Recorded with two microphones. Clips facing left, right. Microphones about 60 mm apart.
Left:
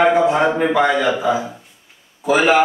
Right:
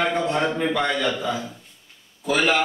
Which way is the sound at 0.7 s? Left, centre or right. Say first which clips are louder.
Left 7 dB; centre.